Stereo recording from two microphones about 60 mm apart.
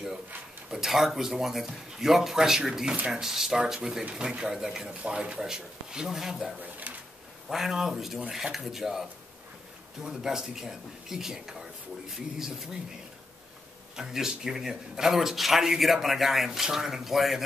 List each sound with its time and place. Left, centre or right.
0.7 s speech: centre
6.6 s pigeon: right
7.4 s speech: centre
10.0 s speech: centre
13.9 s speech: centre